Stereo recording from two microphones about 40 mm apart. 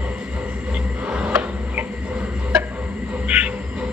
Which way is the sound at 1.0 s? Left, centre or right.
Right.